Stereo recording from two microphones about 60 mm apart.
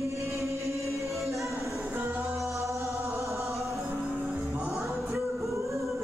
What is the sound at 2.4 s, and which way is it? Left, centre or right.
Music, right.